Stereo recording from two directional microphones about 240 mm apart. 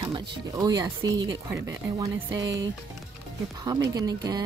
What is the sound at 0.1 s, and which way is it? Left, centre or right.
Speech, centre.